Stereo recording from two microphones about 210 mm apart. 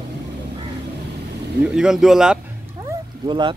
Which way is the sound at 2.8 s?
20° right (ahead or behind).